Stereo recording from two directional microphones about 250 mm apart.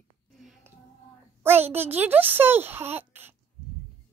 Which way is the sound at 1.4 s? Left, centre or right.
Centre.